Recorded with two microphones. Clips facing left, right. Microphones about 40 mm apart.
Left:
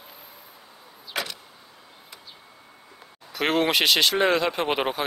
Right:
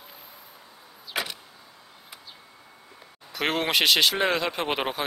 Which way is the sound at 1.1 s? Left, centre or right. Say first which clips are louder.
Even; centre.